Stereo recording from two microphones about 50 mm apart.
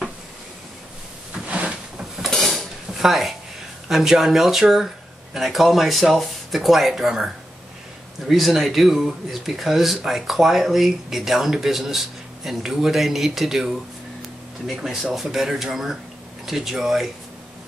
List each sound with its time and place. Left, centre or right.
1.3 s a sound: centre
2.0 s drawer open or close: centre
3.9 s speech: centre
8.3 s speech: centre